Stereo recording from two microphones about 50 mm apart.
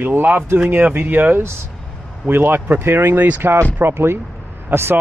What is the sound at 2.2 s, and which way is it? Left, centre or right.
Speech, right.